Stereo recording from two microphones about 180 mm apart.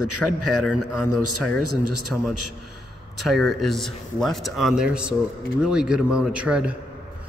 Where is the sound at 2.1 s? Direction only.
Centre (ahead or behind).